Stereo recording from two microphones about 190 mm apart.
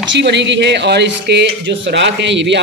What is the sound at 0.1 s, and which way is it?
Speech, 65° right (ahead or behind).